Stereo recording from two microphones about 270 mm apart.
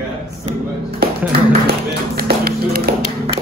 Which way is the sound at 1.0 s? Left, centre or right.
Right.